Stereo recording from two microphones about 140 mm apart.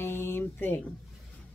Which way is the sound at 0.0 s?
15° left (ahead or behind).